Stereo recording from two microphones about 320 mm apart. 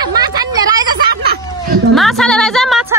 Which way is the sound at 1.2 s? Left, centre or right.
Right.